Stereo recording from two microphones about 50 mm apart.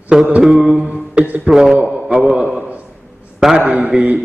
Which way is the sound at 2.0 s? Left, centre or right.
Centre.